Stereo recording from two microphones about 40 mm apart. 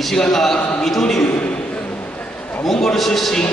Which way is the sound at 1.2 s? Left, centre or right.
Left.